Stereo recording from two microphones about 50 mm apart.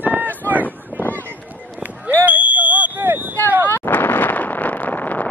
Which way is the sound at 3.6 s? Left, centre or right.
Left.